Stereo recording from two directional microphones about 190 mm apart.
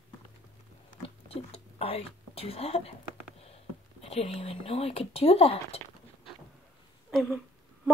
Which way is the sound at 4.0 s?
30° left (ahead or behind).